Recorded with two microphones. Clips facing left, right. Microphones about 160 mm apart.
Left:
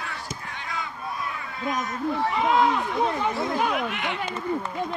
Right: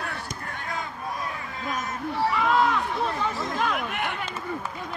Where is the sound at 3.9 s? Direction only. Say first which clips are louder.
Even; 55° right (ahead or behind).